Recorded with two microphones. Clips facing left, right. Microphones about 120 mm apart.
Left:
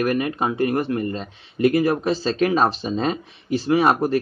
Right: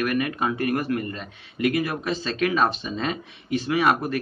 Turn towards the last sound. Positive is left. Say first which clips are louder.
# left 4 dB
turn(degrees=35)  # may be behind; listen again after turning